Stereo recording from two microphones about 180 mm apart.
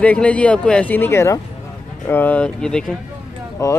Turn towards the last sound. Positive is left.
turn(degrees=20)  # may be behind; listen again after turning